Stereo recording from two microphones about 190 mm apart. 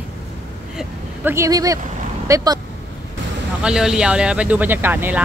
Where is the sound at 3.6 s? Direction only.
5° right (ahead or behind).